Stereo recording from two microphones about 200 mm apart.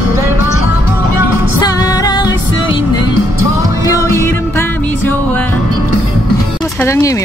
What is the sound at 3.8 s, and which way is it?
Music, 15° left (ahead or behind).